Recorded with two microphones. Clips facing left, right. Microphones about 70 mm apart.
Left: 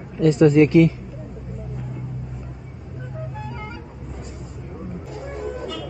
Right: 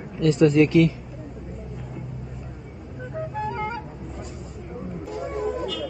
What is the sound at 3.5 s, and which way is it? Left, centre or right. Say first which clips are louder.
Music: right 6 dB; right.